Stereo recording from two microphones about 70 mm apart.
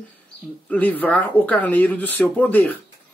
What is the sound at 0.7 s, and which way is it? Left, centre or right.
Speech, left.